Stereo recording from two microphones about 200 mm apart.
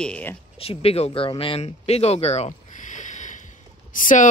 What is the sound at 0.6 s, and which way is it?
Speech, 30° left (ahead or behind).